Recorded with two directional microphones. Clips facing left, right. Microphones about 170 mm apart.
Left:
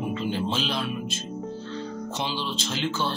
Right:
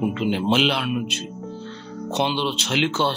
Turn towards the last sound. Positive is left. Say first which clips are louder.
# right 6 dB
turn(degrees=-70)  # may be behind; listen again after turning